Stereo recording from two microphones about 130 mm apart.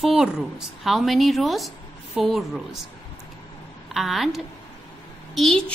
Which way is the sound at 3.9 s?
Centre (ahead or behind).